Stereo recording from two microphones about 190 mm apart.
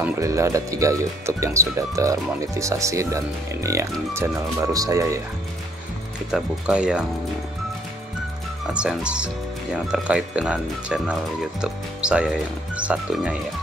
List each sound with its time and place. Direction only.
0.0 s speech: 15° right (ahead or behind)
6.3 s speech: 5° right (ahead or behind)
8.7 s speech: 5° right (ahead or behind)